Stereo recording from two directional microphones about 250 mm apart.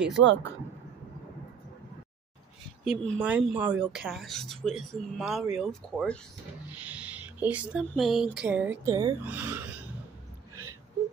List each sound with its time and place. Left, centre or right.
0.1 s speech: right
2.8 s speech: centre